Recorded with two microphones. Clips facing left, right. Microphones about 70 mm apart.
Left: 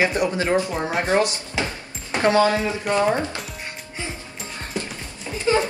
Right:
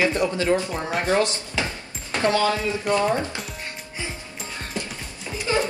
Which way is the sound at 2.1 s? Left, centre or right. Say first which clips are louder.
Left 3 dB; left.